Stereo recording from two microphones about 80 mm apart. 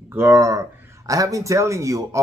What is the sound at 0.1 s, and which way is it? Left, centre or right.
A man's voice, right.